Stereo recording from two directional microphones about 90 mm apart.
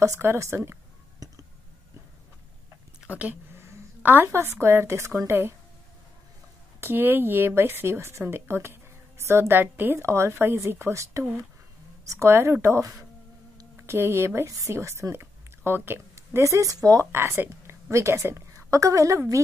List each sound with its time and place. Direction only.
0.0 s a woman's voice: 30° right (ahead or behind)
3.0 s speech: 15° right (ahead or behind)
3.5 s a sound: 25° right (ahead or behind)
4.3 s a woman's voice: 30° right (ahead or behind)
6.8 s a woman's voice: 25° right (ahead or behind); by 17.1 s 40° right (ahead or behind)
17.1 s a woman's voice: 25° right (ahead or behind)